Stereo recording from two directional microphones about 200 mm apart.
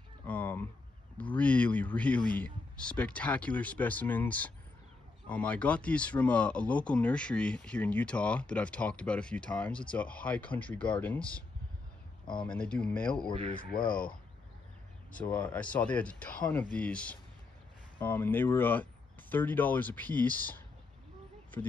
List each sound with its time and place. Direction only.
0.3 s a sound: 10° left (ahead or behind)
1.3 s speech: 5° left (ahead or behind)
12.4 s speech: 5° left (ahead or behind)
13.6 s speech: 45° left (ahead or behind)
15.1 s speech: 5° left (ahead or behind)